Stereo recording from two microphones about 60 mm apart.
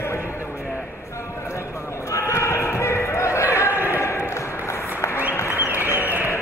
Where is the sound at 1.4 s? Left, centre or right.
Left.